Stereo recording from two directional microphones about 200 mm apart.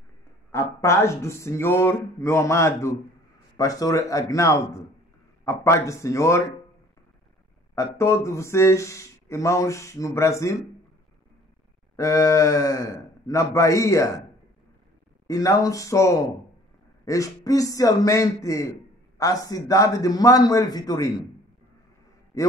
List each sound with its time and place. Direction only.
0.5 s a man's voice: 15° left (ahead or behind)
7.7 s a man's voice: 15° left (ahead or behind)
12.0 s a man's voice: 15° left (ahead or behind)
15.2 s a man's voice: 15° left (ahead or behind)
22.3 s a man's voice: 15° left (ahead or behind)